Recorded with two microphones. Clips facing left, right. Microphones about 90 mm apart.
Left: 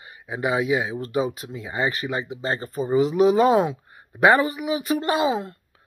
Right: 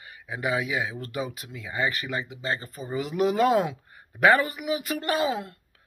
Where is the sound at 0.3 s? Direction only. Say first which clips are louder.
Left 5 dB; 30° left (ahead or behind).